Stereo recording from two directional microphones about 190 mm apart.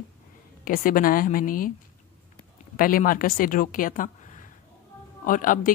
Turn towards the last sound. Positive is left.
turn(degrees=45)  # may be behind; listen again after turning